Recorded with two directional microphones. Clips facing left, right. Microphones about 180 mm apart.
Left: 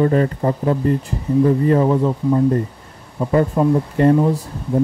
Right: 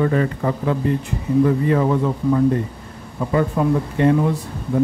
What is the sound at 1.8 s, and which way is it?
Speech, 25° left (ahead or behind).